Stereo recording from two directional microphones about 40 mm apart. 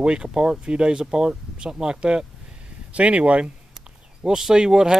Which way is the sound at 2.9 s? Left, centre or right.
Right.